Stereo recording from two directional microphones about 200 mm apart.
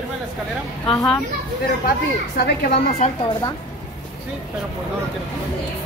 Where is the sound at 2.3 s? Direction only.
55° left (ahead or behind).